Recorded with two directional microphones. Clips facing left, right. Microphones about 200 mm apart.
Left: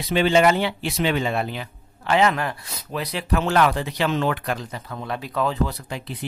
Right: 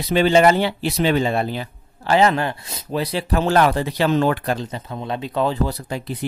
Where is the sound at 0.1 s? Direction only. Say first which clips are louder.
Right 3 dB; 40° right (ahead or behind).